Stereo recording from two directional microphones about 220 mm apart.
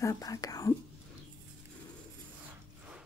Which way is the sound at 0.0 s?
15° left (ahead or behind).